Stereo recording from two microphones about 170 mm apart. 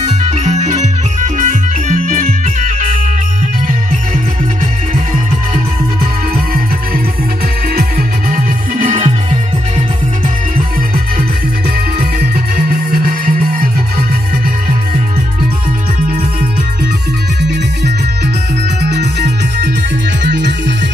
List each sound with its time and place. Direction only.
0.0 s music: 40° right (ahead or behind)
8.3 s music: 50° right (ahead or behind)
12.2 s music: 60° right (ahead or behind)
18.8 s music: 80° right
20.2 s music: 90° right